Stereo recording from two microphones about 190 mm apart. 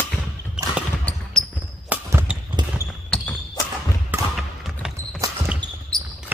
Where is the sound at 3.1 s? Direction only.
5° left (ahead or behind).